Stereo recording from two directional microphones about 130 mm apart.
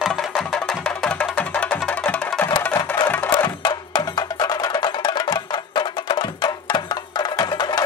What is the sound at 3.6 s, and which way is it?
Music, 35° left (ahead or behind).